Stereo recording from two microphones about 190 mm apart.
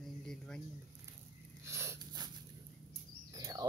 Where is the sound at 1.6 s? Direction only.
15° right (ahead or behind).